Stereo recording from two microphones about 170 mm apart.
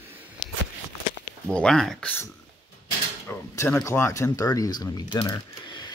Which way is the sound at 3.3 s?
15° left (ahead or behind).